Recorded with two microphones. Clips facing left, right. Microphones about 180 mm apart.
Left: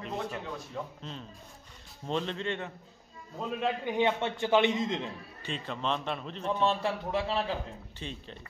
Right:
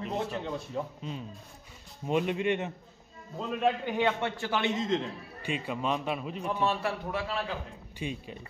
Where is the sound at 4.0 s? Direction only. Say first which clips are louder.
Left 1 dB; 20° left (ahead or behind).